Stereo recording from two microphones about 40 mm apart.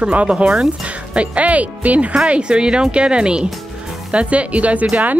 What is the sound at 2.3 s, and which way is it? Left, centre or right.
Speech, right.